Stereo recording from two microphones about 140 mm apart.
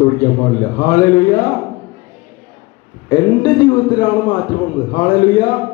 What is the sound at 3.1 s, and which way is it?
Speech, 30° left (ahead or behind).